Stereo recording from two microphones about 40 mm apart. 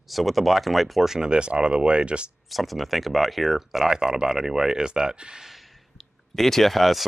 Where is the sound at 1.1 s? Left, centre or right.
Right.